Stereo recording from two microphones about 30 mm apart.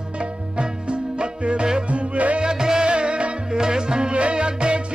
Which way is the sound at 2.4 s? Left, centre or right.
Right.